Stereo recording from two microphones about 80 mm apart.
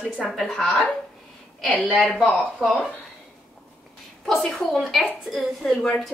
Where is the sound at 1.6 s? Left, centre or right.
Left.